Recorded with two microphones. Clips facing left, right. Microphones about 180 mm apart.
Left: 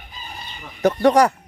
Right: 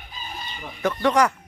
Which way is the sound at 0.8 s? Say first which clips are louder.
Left 5 dB; 40° left (ahead or behind).